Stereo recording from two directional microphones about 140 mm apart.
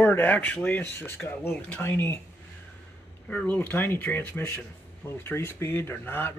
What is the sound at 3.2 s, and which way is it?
Speech, 10° left (ahead or behind).